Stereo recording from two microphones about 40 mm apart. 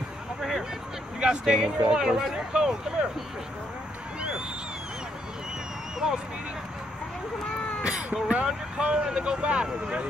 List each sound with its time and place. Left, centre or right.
0.4 s a sound: centre
1.2 s speech: right
5.9 s speech: centre
8.1 s speech: right
8.7 s speech: right